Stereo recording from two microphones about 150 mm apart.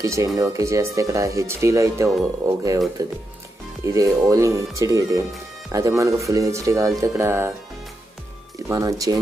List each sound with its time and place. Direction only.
0.0 s speech: 20° right (ahead or behind)
8.6 s speech: 25° right (ahead or behind)